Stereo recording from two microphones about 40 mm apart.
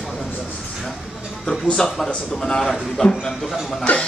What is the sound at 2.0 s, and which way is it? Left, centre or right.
A man's voice, centre.